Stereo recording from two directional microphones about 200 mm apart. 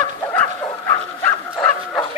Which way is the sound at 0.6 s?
15° left (ahead or behind).